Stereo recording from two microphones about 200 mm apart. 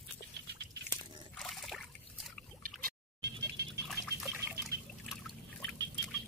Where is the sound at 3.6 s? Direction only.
55° right (ahead or behind).